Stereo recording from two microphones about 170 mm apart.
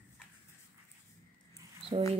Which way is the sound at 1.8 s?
40° right (ahead or behind).